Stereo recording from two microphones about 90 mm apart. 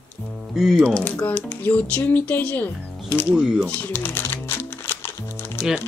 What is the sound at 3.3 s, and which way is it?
Speech, 5° right (ahead or behind).